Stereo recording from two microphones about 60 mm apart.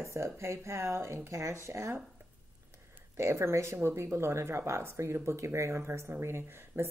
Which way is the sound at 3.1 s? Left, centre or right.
Right.